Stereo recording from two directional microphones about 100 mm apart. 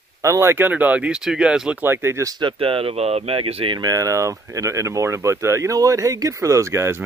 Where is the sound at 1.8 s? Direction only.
25° right (ahead or behind).